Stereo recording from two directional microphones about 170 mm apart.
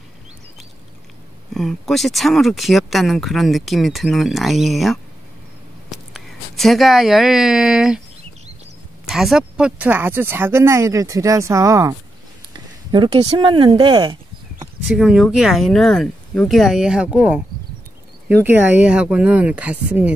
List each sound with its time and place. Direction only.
1.5 s speech: centre (ahead or behind)
9.0 s speech: centre (ahead or behind); by 11.9 s 15° right (ahead or behind)
12.9 s speech: 25° right (ahead or behind)
14.9 s speech: 5° right (ahead or behind)